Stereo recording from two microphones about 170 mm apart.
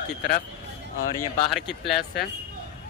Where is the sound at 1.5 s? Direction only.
Centre (ahead or behind).